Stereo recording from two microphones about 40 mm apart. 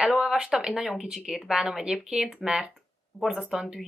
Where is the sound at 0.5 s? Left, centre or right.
Centre.